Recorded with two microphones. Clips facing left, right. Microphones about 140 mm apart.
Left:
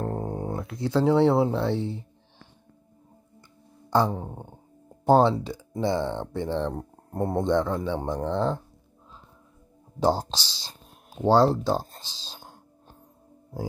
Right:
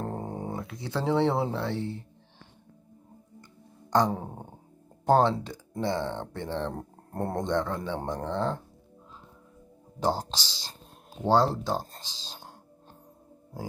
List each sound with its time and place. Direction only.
0.0 s a sound: centre (ahead or behind)
0.7 s speech: 10° left (ahead or behind)
3.9 s a sound: 5° left (ahead or behind)
4.2 s speech: 5° right (ahead or behind)
5.0 s speech: 10° left (ahead or behind)
9.9 s speech: 15° left (ahead or behind)
10.4 s speech: 15° right (ahead or behind)
11.2 s speech: 10° left (ahead or behind)
12.0 s speech: 15° right (ahead or behind)